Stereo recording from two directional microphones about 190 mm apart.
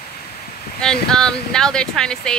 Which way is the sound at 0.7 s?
5° left (ahead or behind).